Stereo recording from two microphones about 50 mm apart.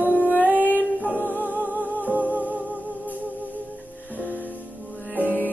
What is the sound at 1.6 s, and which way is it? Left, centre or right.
Music, right.